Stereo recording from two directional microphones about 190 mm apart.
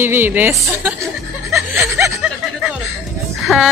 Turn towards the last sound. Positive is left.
turn(degrees=0)  # may be behind; listen again after turning